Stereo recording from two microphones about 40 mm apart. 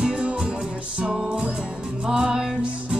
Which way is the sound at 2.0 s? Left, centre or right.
Centre.